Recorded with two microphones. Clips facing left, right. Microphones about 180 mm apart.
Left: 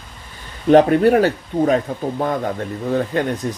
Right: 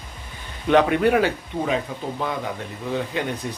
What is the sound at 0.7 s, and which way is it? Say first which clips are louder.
Speech: left 6 dB; 40° left (ahead or behind).